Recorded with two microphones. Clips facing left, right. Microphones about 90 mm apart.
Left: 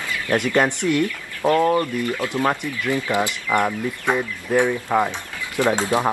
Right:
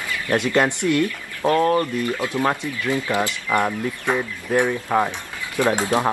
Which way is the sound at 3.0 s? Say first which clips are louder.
Left 2 dB; 20° left (ahead or behind).